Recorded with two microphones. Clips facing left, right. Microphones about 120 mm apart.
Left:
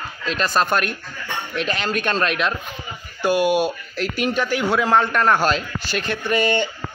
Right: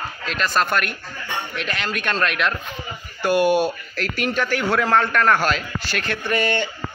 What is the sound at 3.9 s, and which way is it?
A man's voice, 20° left (ahead or behind).